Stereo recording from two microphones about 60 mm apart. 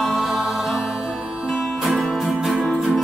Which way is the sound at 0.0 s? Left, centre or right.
Centre.